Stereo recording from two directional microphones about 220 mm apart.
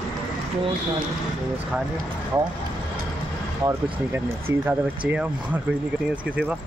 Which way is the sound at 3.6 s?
10° right (ahead or behind).